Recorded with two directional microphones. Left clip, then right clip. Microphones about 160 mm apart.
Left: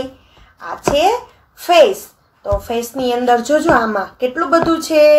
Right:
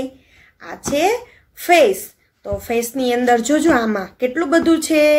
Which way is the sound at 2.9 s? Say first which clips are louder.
Left 2 dB; 5° right (ahead or behind).